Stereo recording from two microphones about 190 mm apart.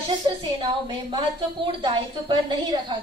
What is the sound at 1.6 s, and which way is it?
A woman's voice, 25° right (ahead or behind).